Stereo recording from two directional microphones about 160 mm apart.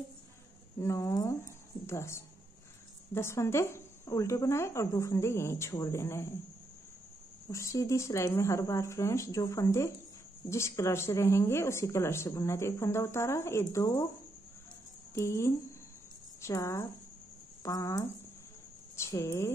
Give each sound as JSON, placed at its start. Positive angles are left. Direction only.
{"t": 0.7, "sound": "speech", "side_deg": 20}
{"t": 7.5, "sound": "speech", "side_deg": 20}
{"t": 15.1, "sound": "a woman's voice", "side_deg": 15}